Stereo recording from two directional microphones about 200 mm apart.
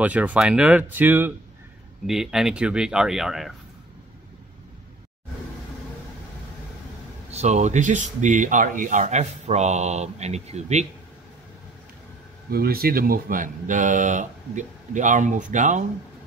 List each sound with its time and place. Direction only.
0.0 s speech: 5° right (ahead or behind)
7.2 s speech: 35° right (ahead or behind)
12.4 s speech: 50° right (ahead or behind)